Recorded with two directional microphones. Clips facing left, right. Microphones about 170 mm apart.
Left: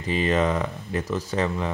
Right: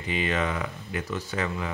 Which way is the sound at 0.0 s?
35° left (ahead or behind).